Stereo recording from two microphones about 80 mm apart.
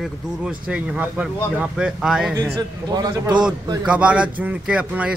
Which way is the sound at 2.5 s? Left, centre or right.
Right.